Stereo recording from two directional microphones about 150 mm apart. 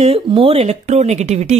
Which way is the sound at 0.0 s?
40° right (ahead or behind).